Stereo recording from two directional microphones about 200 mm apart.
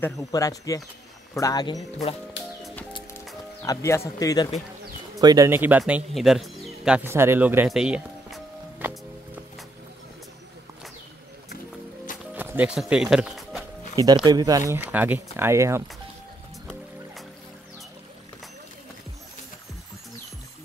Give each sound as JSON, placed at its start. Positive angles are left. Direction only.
{"t": 0.0, "sound": "speech", "side_deg": 0}
{"t": 0.3, "sound": "speech", "side_deg": 15}
{"t": 3.6, "sound": "speech", "side_deg": 15}
{"t": 5.2, "sound": "music", "side_deg": -15}
{"t": 12.4, "sound": "music", "side_deg": -10}
{"t": 13.9, "sound": "speech", "side_deg": -20}